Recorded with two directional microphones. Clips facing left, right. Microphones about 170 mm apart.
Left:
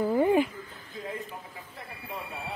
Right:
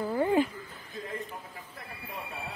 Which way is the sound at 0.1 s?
15° left (ahead or behind).